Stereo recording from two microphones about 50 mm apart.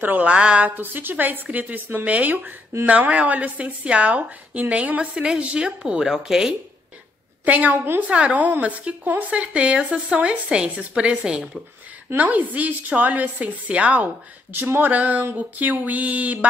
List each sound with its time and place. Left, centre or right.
0.2 s a woman's voice: right
0.7 s a woman's voice: right; by 6.5 s centre
7.4 s a woman's voice: right
7.7 s a woman's voice: right
8.1 s a woman's voice: right
12.2 s a woman's voice: right
14.5 s a woman's voice: right